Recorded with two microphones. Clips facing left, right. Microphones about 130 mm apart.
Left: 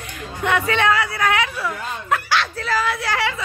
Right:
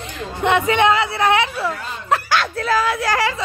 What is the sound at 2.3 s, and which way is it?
Speech, 45° right (ahead or behind).